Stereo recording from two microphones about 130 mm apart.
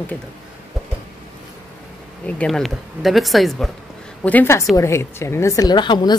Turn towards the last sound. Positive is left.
turn(degrees=35)  # may be behind; listen again after turning